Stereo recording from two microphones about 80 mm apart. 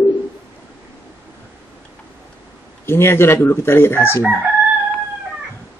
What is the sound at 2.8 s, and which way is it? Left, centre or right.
Speech, left.